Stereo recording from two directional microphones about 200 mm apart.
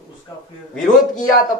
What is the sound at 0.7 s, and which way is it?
Speech, centre (ahead or behind).